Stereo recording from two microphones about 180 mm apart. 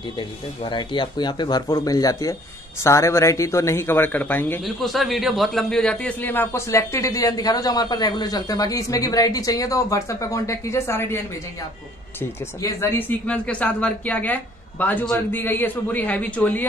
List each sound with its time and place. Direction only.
0.7 s a man's voice: 25° left (ahead or behind)
12.2 s a man's voice: 15° left (ahead or behind)